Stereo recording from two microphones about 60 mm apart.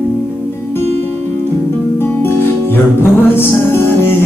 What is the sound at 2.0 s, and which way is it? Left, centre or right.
Music, left.